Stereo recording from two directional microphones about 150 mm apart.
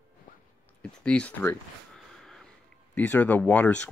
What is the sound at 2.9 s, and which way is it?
Speech, 10° left (ahead or behind).